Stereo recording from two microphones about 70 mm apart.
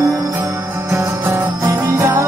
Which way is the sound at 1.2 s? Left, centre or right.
Right.